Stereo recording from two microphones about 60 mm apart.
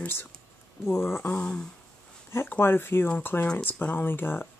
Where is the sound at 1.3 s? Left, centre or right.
Centre.